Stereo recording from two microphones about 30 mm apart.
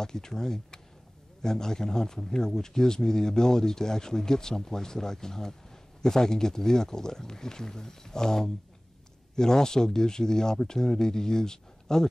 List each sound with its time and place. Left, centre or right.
0.0 s speech: centre